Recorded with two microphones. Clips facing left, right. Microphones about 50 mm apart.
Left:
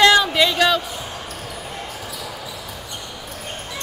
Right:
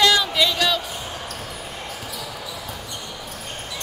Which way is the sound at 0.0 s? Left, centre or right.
Left.